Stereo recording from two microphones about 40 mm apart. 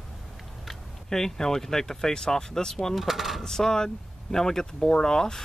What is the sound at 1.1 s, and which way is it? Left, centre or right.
Speech, centre.